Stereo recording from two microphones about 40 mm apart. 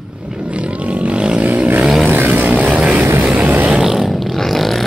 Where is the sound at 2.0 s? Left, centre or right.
Right.